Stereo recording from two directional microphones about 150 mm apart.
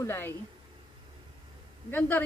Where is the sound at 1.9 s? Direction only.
15° left (ahead or behind).